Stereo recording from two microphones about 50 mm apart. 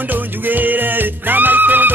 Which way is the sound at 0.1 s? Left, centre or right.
Right.